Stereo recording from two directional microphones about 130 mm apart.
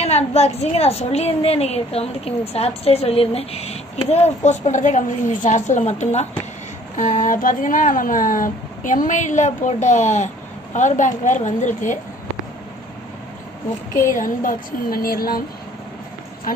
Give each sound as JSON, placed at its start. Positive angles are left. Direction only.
{"t": 0.0, "sound": "a woman's voice", "side_deg": 55}
{"t": 4.5, "sound": "a woman's voice", "side_deg": 75}
{"t": 7.0, "sound": "a woman's voice", "side_deg": 80}
{"t": 14.1, "sound": "a woman's voice", "side_deg": 90}